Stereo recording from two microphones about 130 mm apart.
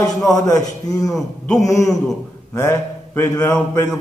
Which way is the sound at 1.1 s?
Centre (ahead or behind).